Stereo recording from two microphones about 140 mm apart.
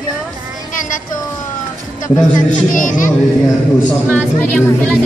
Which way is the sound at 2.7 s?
65° left (ahead or behind).